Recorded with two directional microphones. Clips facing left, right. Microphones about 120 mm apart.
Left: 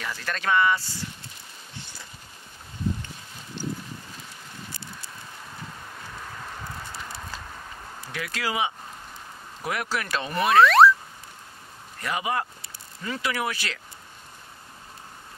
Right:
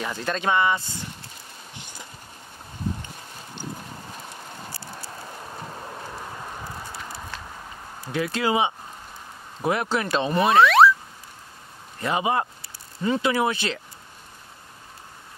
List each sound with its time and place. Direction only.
0.0 s speech: 20° right (ahead or behind)
1.8 s a sound: 15° right (ahead or behind)
7.0 s walk: 5° right (ahead or behind)
8.1 s speech: 25° right (ahead or behind)
10.6 s a sound: centre (ahead or behind)
12.0 s speech: 25° right (ahead or behind)